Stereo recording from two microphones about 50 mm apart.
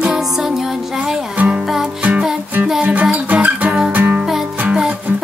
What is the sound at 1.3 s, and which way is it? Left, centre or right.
Music, right.